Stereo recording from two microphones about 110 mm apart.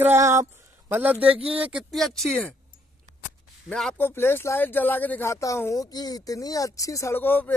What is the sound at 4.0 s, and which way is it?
Speech, 20° left (ahead or behind).